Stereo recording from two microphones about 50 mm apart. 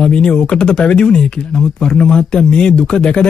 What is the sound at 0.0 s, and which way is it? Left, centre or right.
Speech, centre.